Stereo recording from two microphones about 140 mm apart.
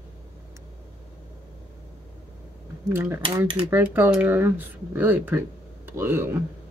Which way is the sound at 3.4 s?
40° right (ahead or behind).